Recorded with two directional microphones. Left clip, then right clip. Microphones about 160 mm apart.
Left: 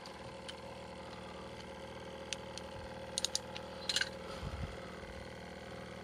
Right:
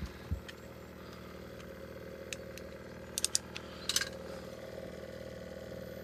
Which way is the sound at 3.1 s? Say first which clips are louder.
Right 2 dB; 30° right (ahead or behind).